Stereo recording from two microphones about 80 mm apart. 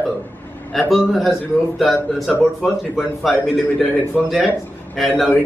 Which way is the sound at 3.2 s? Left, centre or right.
Centre.